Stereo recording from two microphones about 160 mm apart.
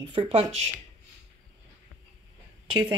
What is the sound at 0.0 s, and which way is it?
Speech, 30° right (ahead or behind).